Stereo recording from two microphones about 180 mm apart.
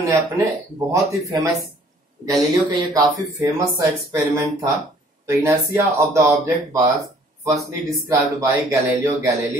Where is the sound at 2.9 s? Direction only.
15° right (ahead or behind).